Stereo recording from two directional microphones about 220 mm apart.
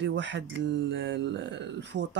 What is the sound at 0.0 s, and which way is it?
Speech, 55° right (ahead or behind).